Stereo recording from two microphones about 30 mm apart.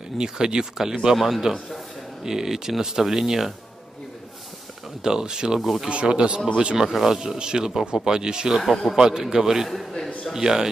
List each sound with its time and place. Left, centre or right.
0.2 s speech: right
1.1 s speech: centre
2.2 s a man's voice: centre
5.0 s speech: right
5.6 s speech: centre
5.9 s a man's voice: right
6.9 s a man's voice: centre
7.2 s a man's voice: right
9.7 s a man's voice: centre
10.3 s speech: centre